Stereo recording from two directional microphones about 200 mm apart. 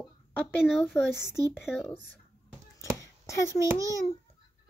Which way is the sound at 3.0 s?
15° left (ahead or behind).